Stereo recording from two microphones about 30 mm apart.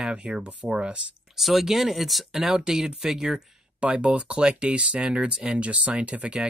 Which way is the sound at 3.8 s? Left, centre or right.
Right.